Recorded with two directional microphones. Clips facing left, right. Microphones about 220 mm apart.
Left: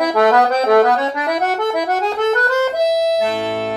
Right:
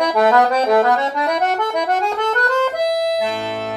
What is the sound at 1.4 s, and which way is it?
Accordion, 5° left (ahead or behind).